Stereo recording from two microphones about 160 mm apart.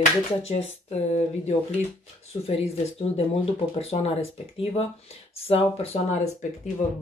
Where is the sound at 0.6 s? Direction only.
40° left (ahead or behind).